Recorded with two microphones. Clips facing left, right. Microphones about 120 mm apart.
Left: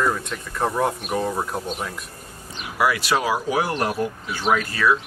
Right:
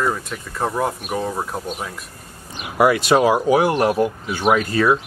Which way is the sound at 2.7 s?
25° right (ahead or behind).